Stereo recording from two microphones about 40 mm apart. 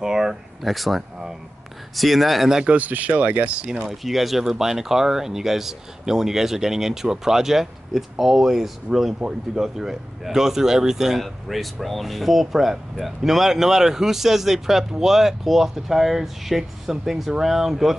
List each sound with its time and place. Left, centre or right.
0.0 s speech: centre
0.6 s speech: centre
2.6 s speech: right
3.5 s speech: right
3.8 s speech: centre